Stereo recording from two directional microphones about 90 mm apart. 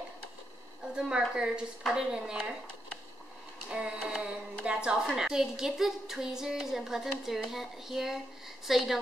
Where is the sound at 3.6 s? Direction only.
10° right (ahead or behind).